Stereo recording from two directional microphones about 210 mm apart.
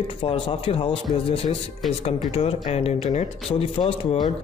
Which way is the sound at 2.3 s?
30° left (ahead or behind).